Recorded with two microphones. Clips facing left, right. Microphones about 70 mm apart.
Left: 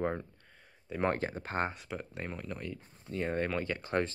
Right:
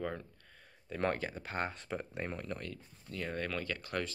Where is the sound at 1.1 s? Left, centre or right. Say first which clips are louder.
Left 4 dB; left.